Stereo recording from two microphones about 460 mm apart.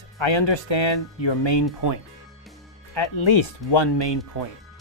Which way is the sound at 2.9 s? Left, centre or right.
Left.